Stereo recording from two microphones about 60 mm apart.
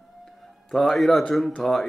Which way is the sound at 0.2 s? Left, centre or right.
Centre.